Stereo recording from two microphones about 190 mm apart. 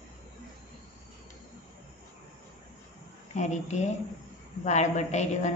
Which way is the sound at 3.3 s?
40° left (ahead or behind).